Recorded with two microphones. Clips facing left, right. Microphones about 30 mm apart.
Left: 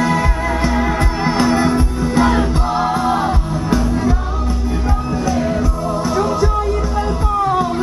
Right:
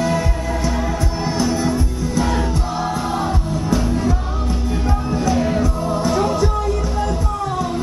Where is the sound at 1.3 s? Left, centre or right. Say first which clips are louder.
Left 5 dB; left.